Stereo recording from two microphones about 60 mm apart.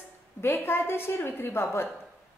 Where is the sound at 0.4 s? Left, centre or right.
Left.